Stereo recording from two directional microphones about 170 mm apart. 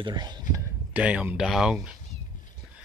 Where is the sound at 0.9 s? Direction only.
10° right (ahead or behind).